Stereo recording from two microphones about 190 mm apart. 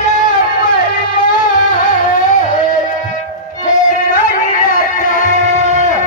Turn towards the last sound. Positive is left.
turn(degrees=40)  # may be behind; listen again after turning